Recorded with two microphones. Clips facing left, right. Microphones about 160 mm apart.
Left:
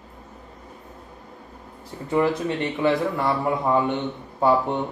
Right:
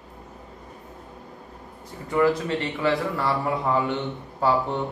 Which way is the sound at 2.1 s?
20° left (ahead or behind).